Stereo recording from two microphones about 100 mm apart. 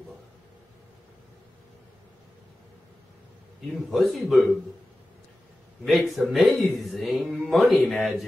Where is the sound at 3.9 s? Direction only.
Centre (ahead or behind).